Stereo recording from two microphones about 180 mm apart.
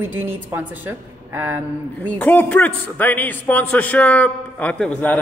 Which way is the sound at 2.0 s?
10° left (ahead or behind).